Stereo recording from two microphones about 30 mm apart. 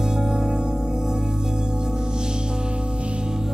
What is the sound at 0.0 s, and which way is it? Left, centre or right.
Music, right.